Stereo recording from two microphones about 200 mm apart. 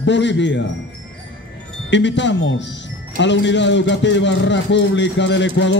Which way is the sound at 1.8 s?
65° left (ahead or behind).